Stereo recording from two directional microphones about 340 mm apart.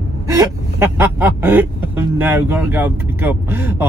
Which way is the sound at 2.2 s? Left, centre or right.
Centre.